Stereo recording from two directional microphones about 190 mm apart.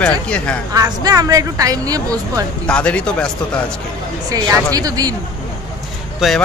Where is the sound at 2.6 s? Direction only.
5° left (ahead or behind).